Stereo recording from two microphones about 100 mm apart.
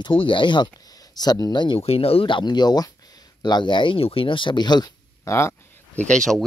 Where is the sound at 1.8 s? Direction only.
75° left (ahead or behind); by 4.9 s 45° left (ahead or behind).